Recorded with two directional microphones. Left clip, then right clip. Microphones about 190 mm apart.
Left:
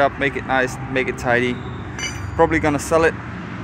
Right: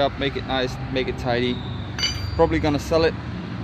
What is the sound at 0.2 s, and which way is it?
Speech, centre (ahead or behind).